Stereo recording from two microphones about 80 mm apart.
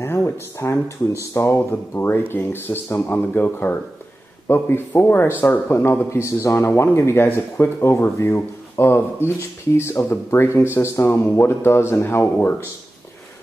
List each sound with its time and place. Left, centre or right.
0.0 s speech: left